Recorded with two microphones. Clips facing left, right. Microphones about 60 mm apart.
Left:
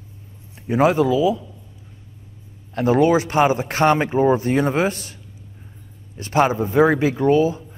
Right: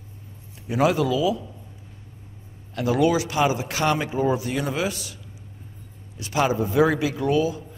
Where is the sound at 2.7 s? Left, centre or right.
Left.